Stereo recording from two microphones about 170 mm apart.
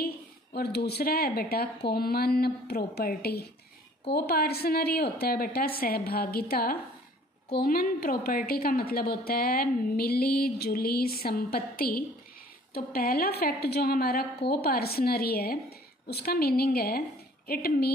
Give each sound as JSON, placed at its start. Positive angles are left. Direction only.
{"t": 0.6, "sound": "a woman's voice", "side_deg": 70}